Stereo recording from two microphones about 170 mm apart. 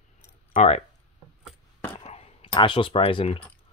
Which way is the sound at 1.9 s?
35° left (ahead or behind).